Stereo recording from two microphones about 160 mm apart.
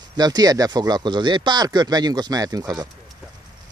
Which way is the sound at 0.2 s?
25° right (ahead or behind).